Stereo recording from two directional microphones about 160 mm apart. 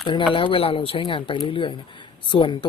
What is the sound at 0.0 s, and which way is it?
Speech, 30° left (ahead or behind).